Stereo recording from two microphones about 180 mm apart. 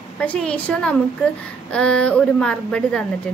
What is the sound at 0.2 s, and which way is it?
A woman's voice, 5° left (ahead or behind).